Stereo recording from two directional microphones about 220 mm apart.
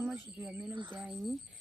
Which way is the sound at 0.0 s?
5° right (ahead or behind).